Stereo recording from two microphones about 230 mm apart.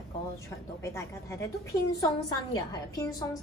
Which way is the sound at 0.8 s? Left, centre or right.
Centre.